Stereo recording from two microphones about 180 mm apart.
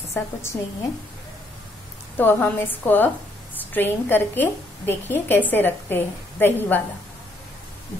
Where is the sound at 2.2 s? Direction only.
10° left (ahead or behind).